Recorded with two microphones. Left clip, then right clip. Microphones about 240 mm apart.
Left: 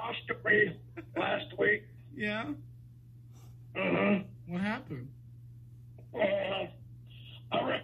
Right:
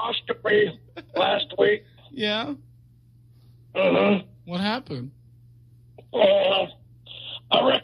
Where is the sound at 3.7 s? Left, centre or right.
Right.